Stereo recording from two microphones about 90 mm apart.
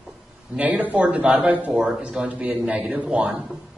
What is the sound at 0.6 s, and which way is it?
A man's voice, 15° right (ahead or behind).